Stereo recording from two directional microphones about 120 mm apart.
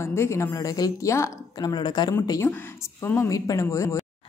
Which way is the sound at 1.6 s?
35° left (ahead or behind).